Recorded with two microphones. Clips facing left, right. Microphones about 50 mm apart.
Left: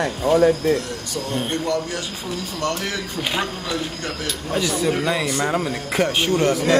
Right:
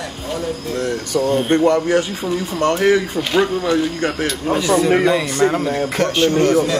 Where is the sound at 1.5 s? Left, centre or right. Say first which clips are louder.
Right 11 dB; right.